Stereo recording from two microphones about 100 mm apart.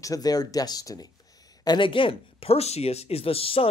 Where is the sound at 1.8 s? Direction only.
60° left (ahead or behind).